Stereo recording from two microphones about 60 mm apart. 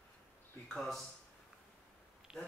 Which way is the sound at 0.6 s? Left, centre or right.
Centre.